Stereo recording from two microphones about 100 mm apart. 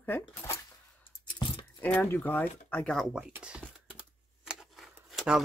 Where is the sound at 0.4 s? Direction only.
30° left (ahead or behind).